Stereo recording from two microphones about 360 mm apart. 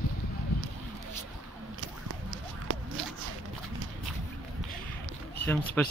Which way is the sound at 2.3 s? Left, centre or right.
Right.